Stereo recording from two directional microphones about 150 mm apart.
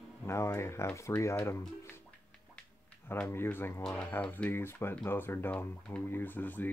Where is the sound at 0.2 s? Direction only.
20° left (ahead or behind).